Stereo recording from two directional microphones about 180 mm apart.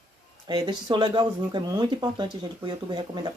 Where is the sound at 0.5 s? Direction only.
25° right (ahead or behind).